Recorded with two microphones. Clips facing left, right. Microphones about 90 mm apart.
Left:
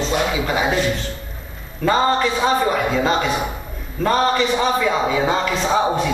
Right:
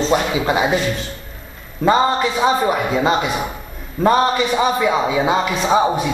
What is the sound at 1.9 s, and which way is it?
A man's voice, 15° right (ahead or behind).